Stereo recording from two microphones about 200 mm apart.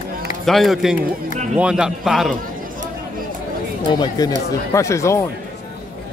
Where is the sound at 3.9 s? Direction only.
20° left (ahead or behind).